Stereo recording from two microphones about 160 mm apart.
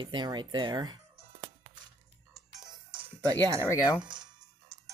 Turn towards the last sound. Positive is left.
turn(degrees=-30)  # may be behind; listen again after turning